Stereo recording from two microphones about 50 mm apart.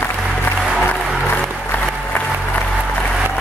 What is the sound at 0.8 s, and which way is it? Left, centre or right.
Music, left.